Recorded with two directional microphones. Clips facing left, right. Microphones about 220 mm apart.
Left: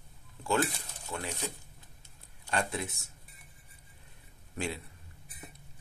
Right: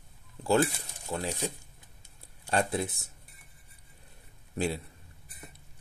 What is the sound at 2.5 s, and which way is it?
Speech, 35° right (ahead or behind).